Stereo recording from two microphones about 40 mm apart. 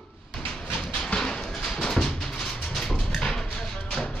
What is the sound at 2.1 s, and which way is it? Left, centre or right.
Music, centre.